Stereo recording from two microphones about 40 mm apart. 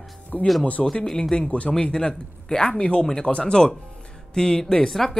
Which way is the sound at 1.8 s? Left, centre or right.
Left.